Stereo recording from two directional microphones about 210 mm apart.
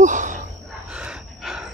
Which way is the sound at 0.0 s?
35° right (ahead or behind).